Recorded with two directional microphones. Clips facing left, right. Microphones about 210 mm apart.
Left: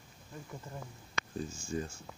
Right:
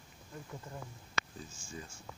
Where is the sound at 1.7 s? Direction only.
50° left (ahead or behind).